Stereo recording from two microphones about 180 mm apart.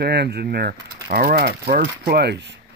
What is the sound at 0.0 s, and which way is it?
Speech, 65° right (ahead or behind).